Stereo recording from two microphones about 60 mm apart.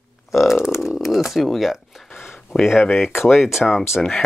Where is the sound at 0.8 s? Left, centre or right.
Centre.